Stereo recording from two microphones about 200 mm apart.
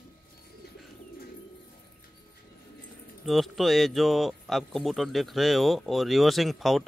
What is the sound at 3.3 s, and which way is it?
Speech, centre (ahead or behind).